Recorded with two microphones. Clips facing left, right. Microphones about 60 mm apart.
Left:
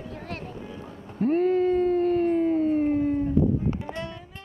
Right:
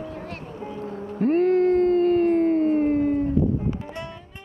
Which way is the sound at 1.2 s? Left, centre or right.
Centre.